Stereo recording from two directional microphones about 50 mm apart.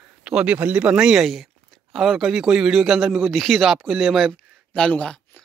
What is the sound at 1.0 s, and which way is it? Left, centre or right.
Speech, centre.